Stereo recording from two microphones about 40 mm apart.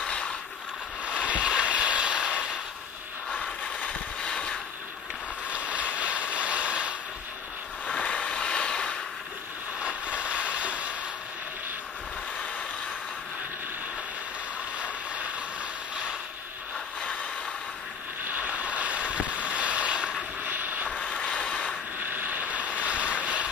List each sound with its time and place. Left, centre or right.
0.0 s mechanisms: left
1.2 s a sound: right
4.2 s vehicle: left
5.5 s boat: right
7.8 s a sound: left
9.8 s vehicle: right
18.2 s a sound: right
18.5 s boat: right
20.4 s vehicle: right
20.9 s vehicle: left
22.0 s boat: right
23.2 s vehicle: right